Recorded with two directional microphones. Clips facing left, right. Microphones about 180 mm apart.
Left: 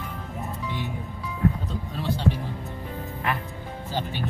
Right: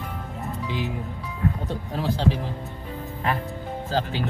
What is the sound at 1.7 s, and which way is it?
Music, 90° right.